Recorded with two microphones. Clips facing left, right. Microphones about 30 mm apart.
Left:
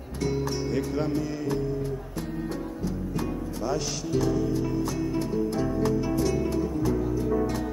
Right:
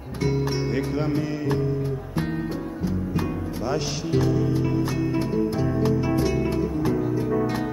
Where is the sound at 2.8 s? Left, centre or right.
Right.